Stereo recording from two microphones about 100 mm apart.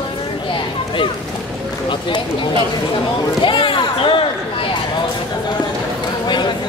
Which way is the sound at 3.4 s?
55° left (ahead or behind).